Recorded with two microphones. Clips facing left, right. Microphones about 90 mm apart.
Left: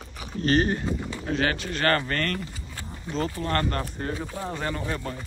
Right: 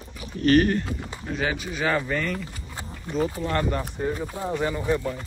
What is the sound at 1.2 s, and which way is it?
Speech, centre (ahead or behind).